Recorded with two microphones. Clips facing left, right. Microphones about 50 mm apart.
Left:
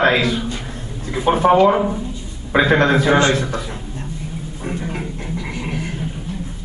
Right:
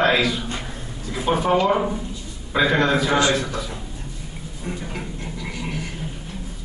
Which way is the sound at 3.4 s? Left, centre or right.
Left.